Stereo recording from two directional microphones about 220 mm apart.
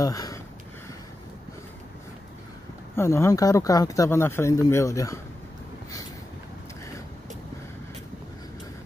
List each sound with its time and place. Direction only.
0.0 s speech: 15° left (ahead or behind)
3.0 s speech: 15° left (ahead or behind)